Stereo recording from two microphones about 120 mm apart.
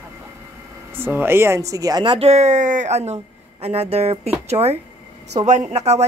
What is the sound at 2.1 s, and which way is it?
A woman's voice, 60° right (ahead or behind).